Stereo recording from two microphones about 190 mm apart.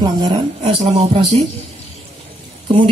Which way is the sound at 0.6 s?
35° right (ahead or behind).